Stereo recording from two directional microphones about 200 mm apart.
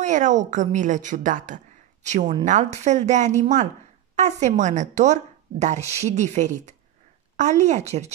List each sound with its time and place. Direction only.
0.0 s speech: 40° right (ahead or behind)